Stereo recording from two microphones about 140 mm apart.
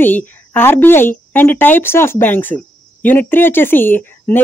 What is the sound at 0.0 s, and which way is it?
Speech, 15° left (ahead or behind).